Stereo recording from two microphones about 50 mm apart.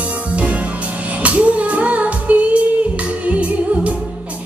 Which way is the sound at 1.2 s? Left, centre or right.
Right.